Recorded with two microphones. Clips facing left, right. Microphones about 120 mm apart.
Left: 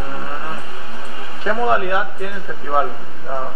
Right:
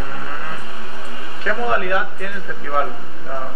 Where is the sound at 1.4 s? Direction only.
25° left (ahead or behind).